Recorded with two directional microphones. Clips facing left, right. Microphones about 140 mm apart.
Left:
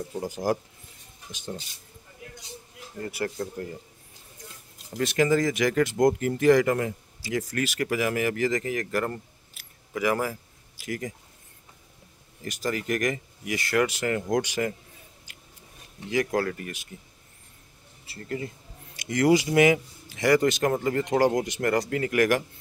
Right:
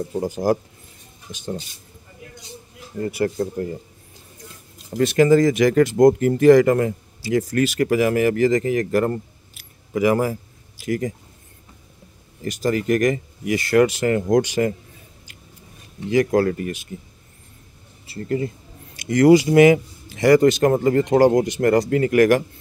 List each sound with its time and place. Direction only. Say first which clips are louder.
0.2 s speech: right 6 dB; 30° right (ahead or behind)
3.0 s speech: right 9 dB; 20° right (ahead or behind)
3.3 s speech: right 8 dB; 30° right (ahead or behind)
4.9 s speech: right 8 dB; 40° right (ahead or behind)
7.2 s speech: right 9 dB; 30° right (ahead or behind)
9.5 s keys jangling: right 8 dB; 20° right (ahead or behind)
10.8 s speech: right 9 dB; 35° right (ahead or behind)
12.4 s speech: right 8 dB; 30° right (ahead or behind)
16.1 s speech: right 8 dB; 30° right (ahead or behind)
18.0 s speech: right 9 dB; 25° right (ahead or behind)
18.9 s speech: right 8 dB; 40° right (ahead or behind)